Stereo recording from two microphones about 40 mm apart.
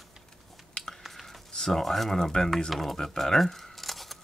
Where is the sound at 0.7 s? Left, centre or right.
Centre.